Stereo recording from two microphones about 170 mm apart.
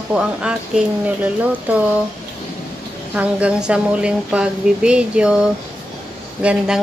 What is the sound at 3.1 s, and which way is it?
A woman's voice, 5° right (ahead or behind).